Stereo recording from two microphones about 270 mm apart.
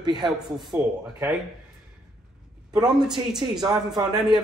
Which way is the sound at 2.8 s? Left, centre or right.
Centre.